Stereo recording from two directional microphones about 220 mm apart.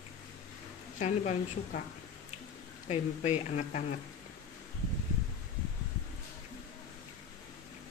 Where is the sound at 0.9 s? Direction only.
30° left (ahead or behind).